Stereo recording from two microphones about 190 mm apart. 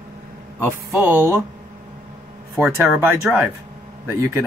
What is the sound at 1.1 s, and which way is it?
Speech, 15° right (ahead or behind).